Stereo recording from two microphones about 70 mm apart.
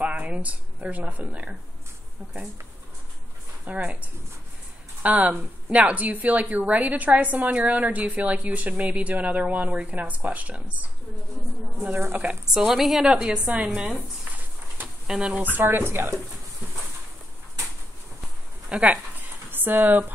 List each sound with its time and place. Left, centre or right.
0.0 s speech: centre
3.6 s a woman's voice: centre
12.1 s a woman's voice: right
12.5 s speech: centre; by 14.9 s right
15.0 s speech: centre
15.5 s speech: right
18.7 s speech: centre
19.5 s speech: right